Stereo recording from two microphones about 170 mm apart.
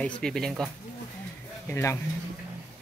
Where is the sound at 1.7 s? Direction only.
15° left (ahead or behind).